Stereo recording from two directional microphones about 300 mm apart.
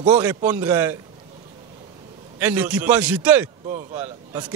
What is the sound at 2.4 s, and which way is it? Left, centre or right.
A man's voice, centre.